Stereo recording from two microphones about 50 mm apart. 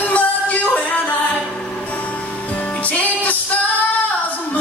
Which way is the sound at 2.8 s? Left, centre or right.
Left.